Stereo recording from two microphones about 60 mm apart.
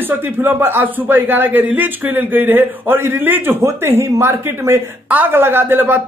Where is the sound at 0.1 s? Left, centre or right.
Right.